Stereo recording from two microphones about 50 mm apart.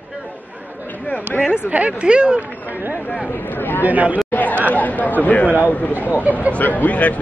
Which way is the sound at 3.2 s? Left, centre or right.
Left.